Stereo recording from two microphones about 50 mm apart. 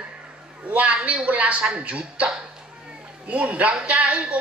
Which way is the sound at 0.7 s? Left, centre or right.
Right.